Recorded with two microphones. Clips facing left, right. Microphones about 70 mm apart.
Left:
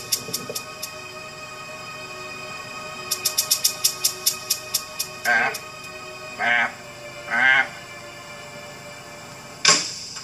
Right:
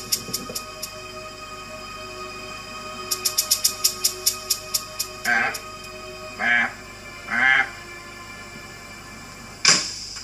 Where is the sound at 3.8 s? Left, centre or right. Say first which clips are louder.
Even; right.